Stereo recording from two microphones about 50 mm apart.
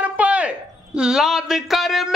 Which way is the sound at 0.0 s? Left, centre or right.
Right.